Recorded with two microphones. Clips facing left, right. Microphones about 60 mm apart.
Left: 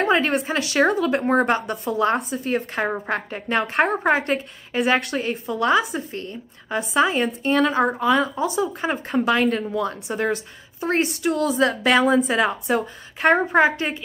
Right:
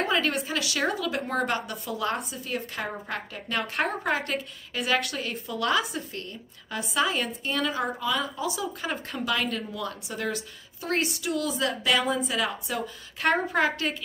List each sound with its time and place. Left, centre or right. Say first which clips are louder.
0.0 s a woman's voice: left 6 dB; left
12.2 s a woman's voice: left 8 dB; left